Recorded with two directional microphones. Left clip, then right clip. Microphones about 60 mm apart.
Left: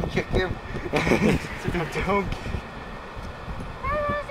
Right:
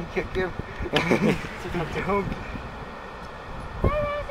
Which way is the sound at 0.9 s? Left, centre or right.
Centre.